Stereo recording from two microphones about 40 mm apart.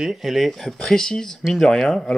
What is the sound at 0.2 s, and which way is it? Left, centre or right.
Speech, centre.